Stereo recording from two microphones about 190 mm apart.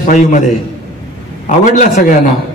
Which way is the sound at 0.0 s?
40° left (ahead or behind).